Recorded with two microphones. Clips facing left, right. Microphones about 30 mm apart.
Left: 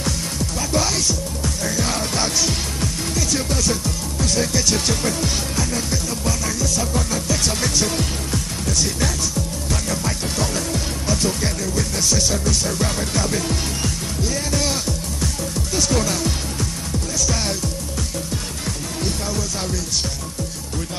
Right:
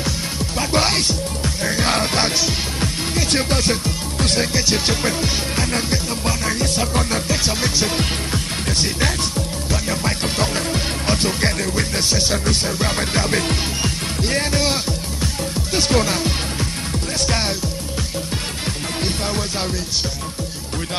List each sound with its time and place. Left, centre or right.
0.6 s music: right
4.6 s speech: right
5.7 s music: right
7.4 s speech: right
8.0 s speech: right
10.0 s music: right
15.7 s music: right